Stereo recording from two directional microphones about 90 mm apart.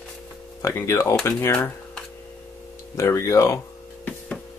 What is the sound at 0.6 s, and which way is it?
Speech, 30° left (ahead or behind).